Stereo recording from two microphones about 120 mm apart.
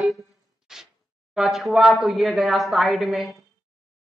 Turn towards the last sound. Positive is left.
turn(degrees=0)  # may be behind; listen again after turning